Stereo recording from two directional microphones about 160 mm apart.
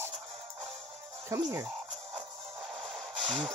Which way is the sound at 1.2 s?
20° right (ahead or behind).